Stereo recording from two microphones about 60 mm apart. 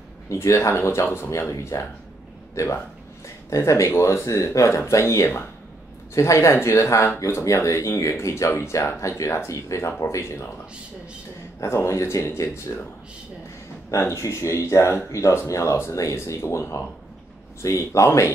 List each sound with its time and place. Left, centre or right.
0.3 s speech: left
1.5 s speech: left
11.6 s speech: left
13.9 s speech: left
16.4 s speech: left